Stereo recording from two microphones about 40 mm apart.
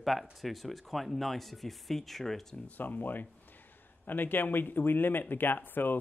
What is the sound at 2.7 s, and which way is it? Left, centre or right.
Speech, left.